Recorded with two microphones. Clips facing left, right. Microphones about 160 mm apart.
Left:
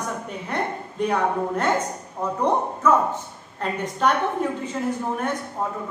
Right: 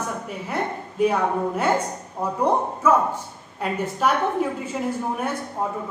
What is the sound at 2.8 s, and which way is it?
A woman's voice, 10° right (ahead or behind).